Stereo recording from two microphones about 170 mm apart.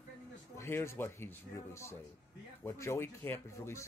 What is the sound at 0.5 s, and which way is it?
Speech, 15° left (ahead or behind).